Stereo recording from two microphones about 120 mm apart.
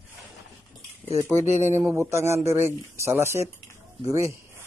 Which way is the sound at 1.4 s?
75° right (ahead or behind).